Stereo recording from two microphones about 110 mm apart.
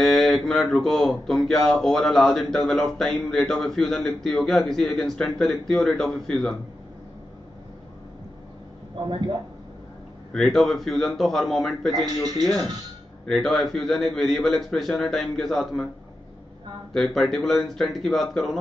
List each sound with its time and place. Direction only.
0.0 s speech: centre (ahead or behind)
9.0 s a man's voice: 45° right (ahead or behind)
10.3 s speech: 5° left (ahead or behind)
12.1 s speech: 35° right (ahead or behind)
13.2 s speech: 5° left (ahead or behind)
16.9 s speech: centre (ahead or behind)